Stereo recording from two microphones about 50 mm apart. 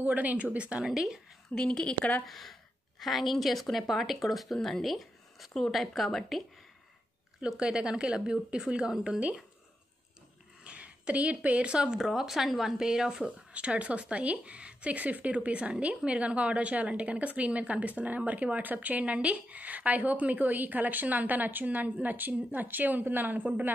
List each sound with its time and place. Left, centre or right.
0.0 s a woman's voice: right
0.9 s speech: centre
1.5 s a woman's voice: centre
2.2 s speech: centre
7.4 s a woman's voice: centre
10.6 s a woman's voice: right
12.0 s a woman's voice: centre
13.1 s a woman's voice: right